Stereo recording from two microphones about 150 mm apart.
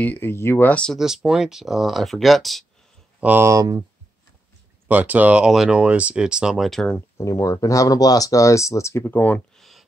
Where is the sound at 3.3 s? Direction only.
20° right (ahead or behind).